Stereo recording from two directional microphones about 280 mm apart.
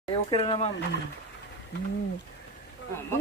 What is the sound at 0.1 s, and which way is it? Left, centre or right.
Speech, centre.